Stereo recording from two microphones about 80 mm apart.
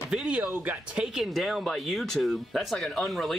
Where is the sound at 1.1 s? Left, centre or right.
Centre.